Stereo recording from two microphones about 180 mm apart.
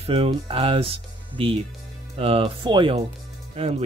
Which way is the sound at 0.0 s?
30° right (ahead or behind).